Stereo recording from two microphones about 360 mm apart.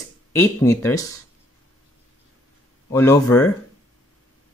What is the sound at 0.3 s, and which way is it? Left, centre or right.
Speech, centre.